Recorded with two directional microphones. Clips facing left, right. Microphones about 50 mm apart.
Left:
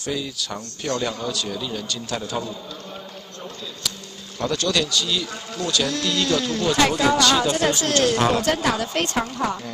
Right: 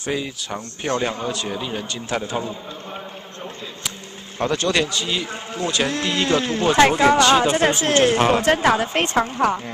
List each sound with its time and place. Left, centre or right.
0.0 s a man's voice: right
4.4 s a man's voice: right